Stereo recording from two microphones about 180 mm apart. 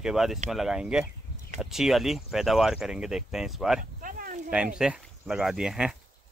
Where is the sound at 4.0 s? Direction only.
50° right (ahead or behind).